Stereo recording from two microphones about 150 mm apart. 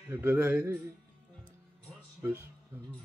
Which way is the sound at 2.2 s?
15° right (ahead or behind).